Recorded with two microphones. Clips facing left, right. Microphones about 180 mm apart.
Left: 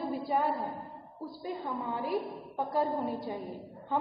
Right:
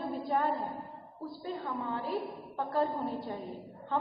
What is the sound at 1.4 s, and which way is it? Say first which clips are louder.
A woman's voice: left 1 dB; 15° left (ahead or behind).